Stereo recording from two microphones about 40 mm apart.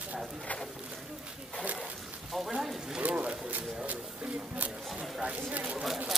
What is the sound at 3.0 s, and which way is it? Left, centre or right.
Pigeon, right.